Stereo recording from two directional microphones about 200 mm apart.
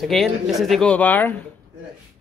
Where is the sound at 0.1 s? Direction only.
Centre (ahead or behind).